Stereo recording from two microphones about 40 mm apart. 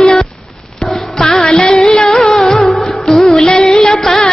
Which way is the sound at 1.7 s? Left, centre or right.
Centre.